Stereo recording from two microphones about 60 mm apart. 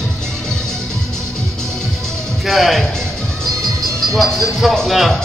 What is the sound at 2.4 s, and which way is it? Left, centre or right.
Speech, centre.